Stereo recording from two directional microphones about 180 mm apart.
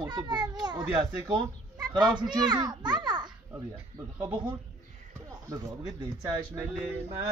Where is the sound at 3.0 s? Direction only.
25° right (ahead or behind).